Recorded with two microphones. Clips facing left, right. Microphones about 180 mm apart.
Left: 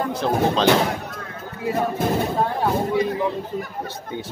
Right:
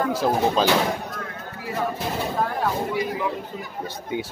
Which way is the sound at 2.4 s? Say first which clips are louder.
Left 3 dB; 25° left (ahead or behind).